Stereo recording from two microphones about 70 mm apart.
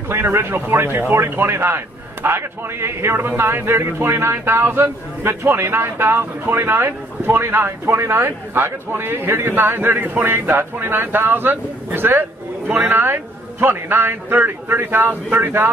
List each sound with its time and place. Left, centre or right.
0.1 s a man's voice: right